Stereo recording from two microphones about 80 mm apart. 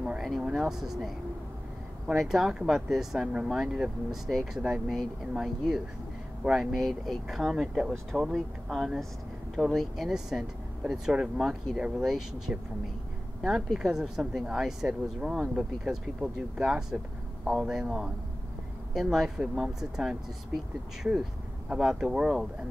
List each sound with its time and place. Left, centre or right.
0.2 s speech: centre